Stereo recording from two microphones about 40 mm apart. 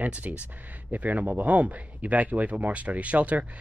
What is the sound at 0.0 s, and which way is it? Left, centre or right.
Speech, right.